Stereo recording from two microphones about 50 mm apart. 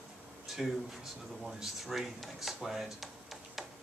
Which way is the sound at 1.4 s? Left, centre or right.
Centre.